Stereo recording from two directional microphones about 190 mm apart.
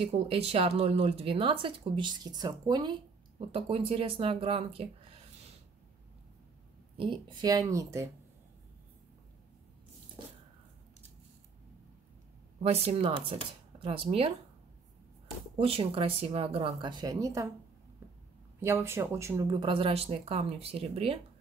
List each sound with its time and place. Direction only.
0.0 s speech: 30° right (ahead or behind)
7.0 s speech: 25° right (ahead or behind)
12.6 s speech: 30° right (ahead or behind)
15.6 s speech: 30° right (ahead or behind)
18.6 s speech: 15° right (ahead or behind); by 21.2 s 30° right (ahead or behind)